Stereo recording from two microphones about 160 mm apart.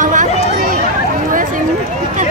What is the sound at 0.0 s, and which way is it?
Run, 55° right (ahead or behind).